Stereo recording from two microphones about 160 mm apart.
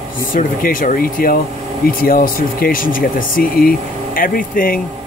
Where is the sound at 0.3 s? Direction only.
60° left (ahead or behind).